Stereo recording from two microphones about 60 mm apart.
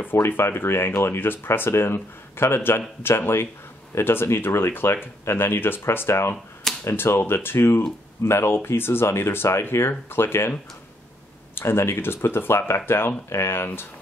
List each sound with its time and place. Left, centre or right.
0.0 s speech: left
11.5 s speech: left